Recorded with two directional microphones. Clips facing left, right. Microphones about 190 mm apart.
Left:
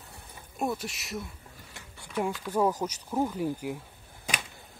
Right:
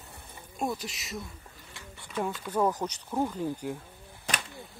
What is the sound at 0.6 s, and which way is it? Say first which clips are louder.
Speech: left 1 dB; centre (ahead or behind).